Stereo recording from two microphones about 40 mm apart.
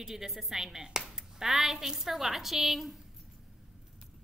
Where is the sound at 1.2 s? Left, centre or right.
Centre.